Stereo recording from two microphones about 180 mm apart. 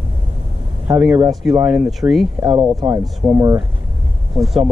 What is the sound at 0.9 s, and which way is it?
Speech, 10° right (ahead or behind).